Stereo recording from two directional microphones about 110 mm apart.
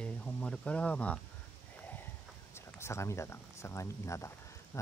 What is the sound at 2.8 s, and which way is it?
Speech, 25° left (ahead or behind).